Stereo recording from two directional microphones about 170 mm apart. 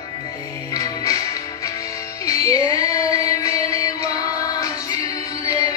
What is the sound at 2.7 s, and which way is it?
Music, 20° left (ahead or behind).